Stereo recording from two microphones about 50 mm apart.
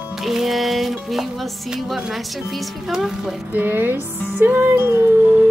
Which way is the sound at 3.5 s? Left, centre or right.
Right.